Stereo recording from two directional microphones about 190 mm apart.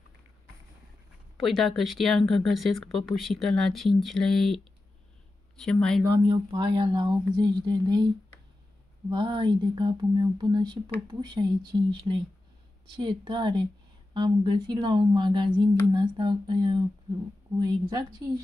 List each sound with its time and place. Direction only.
1.4 s speech: centre (ahead or behind)
5.6 s speech: 5° left (ahead or behind)
6.1 s speech: 25° right (ahead or behind)
9.1 s speech: 25° right (ahead or behind)